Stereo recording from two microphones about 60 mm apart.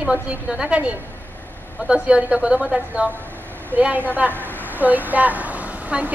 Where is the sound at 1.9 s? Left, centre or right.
Right.